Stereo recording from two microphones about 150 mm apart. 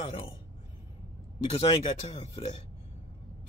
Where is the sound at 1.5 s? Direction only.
45° left (ahead or behind).